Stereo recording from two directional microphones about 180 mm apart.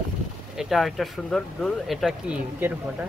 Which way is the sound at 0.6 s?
Centre (ahead or behind).